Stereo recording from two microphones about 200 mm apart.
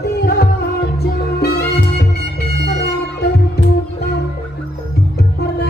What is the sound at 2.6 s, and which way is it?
Music, 55° left (ahead or behind).